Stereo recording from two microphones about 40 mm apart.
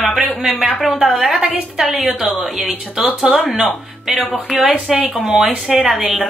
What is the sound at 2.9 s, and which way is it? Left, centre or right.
Speech, centre.